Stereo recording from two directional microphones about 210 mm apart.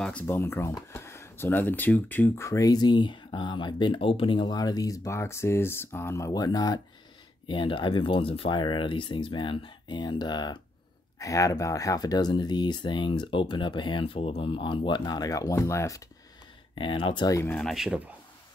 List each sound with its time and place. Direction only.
0.0 s speech: 10° left (ahead or behind)
17.6 s speech: centre (ahead or behind)